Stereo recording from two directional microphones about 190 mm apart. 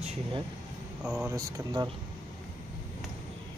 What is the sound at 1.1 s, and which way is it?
Speech, 15° right (ahead or behind).